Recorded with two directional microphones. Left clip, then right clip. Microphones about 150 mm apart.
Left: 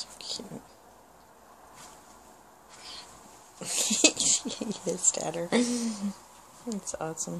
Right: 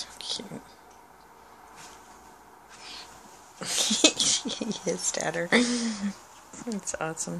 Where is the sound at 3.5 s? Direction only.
5° left (ahead or behind).